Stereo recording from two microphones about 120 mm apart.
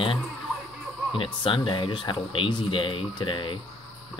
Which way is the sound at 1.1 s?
45° left (ahead or behind).